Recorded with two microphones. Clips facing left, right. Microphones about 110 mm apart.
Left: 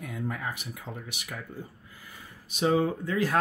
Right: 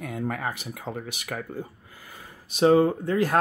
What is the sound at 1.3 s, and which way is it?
Speech, 55° right (ahead or behind).